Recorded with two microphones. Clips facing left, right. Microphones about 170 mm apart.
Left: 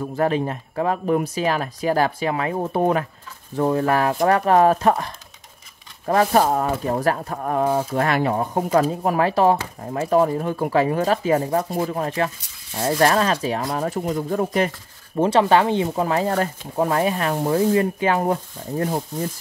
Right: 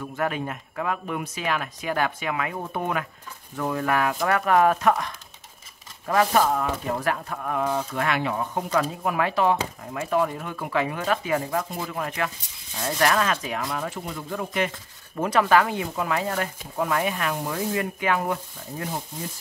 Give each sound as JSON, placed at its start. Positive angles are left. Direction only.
{"t": 0.0, "sound": "speech", "side_deg": 30}
{"t": 15.1, "sound": "speech", "side_deg": 30}